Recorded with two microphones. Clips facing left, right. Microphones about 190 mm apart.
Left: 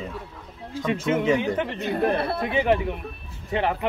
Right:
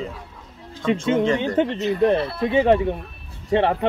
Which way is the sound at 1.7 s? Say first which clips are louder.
Right 4 dB; 55° left (ahead or behind).